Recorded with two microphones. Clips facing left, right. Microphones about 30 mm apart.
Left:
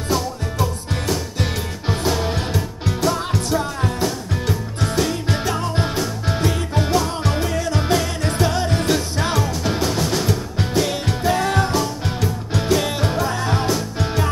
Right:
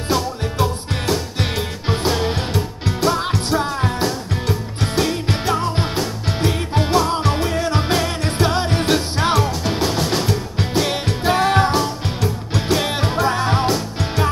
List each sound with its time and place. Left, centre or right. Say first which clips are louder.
0.1 s music: right 2 dB; right
3.3 s music: right 1 dB; right
3.8 s music: right 1 dB; centre
4.9 s music: right 2 dB; right
5.8 s music: even; right
7.4 s music: right 1 dB; right
9.6 s music: right 1 dB; centre
11.2 s music: right 4 dB; right
12.5 s music: even; right
13.2 s music: right 3 dB; right